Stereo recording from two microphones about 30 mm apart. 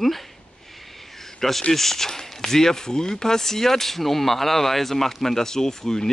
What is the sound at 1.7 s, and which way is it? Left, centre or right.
Speech, centre.